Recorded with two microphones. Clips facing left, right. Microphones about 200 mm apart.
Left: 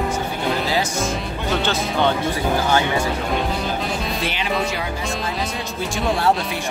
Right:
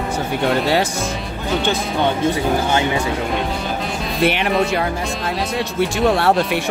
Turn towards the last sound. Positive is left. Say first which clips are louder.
# right 4 dB
turn(degrees=-70)  # may be behind; listen again after turning